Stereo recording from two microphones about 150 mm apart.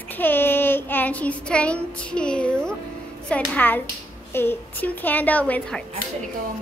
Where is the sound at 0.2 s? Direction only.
15° left (ahead or behind).